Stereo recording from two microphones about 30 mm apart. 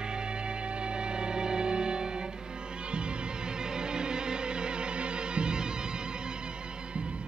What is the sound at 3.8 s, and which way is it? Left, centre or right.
Music, right.